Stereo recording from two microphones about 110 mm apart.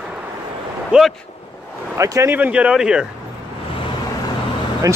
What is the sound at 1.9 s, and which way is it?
Speech, 25° right (ahead or behind).